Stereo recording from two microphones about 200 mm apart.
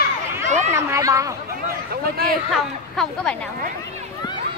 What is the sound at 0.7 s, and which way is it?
Speech, 15° right (ahead or behind).